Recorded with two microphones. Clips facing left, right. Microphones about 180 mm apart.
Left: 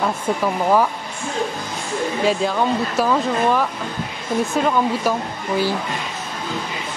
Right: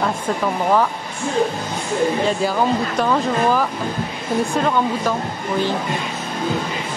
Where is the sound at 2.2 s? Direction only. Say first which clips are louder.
Even; centre (ahead or behind).